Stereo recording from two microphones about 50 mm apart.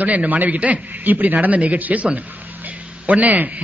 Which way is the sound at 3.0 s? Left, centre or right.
Right.